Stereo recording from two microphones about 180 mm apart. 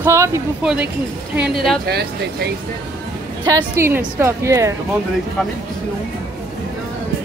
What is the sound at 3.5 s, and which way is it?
Speech, 15° right (ahead or behind).